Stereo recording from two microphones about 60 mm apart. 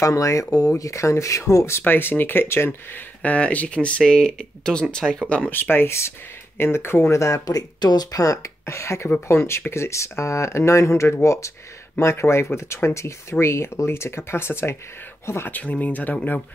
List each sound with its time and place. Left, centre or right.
0.0 s speech: left
0.7 s speech: left
1.8 s speech: left
3.2 s speech: left
5.5 s speech: left
7.1 s speech: left
8.1 s speech: left
9.3 s speech: left
15.5 s speech: left